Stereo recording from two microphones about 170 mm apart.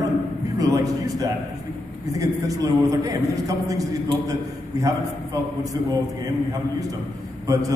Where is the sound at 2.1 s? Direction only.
20° right (ahead or behind).